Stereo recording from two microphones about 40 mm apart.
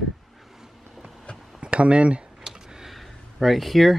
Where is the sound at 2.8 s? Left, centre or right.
Centre.